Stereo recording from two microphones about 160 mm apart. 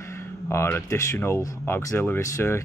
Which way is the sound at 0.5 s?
15° left (ahead or behind).